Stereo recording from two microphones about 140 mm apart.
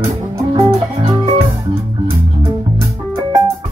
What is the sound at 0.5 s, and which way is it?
Music, 45° right (ahead or behind).